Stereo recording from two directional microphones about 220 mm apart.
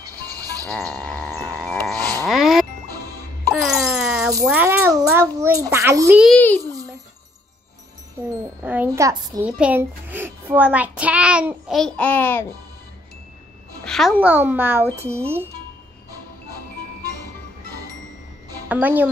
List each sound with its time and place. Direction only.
0.0 s music: 15° right (ahead or behind)
0.9 s wind chime: 5° left (ahead or behind)
2.0 s a sound: 15° right (ahead or behind)
2.2 s music: centre (ahead or behind)
3.6 s a sound: centre (ahead or behind)
4.5 s a child's voice: 10° right (ahead or behind)
6.6 s a sound: 15° right (ahead or behind)
8.6 s a child's voice: 10° right (ahead or behind); by 12.4 s 10° left (ahead or behind)
13.8 s a child's voice: centre (ahead or behind)
18.5 s music: 10° right (ahead or behind)